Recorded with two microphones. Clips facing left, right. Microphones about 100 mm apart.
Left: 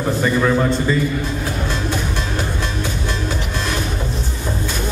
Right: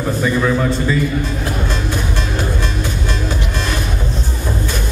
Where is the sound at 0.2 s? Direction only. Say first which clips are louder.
Even; 5° left (ahead or behind).